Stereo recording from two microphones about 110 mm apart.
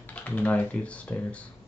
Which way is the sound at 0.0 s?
15° left (ahead or behind).